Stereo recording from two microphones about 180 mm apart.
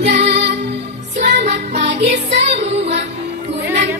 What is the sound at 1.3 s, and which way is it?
Music, 70° right (ahead or behind).